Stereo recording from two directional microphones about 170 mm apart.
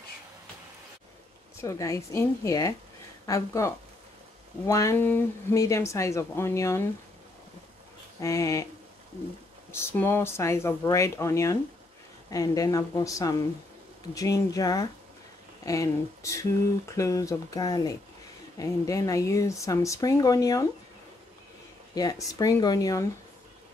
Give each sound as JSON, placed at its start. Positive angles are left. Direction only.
{"t": 1.6, "sound": "speech", "side_deg": 20}
{"t": 8.2, "sound": "speech", "side_deg": 20}
{"t": 9.7, "sound": "speech", "side_deg": 15}
{"t": 21.9, "sound": "speech", "side_deg": 20}